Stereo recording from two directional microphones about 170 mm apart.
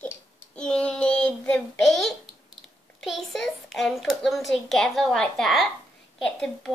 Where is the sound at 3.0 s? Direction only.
Centre (ahead or behind).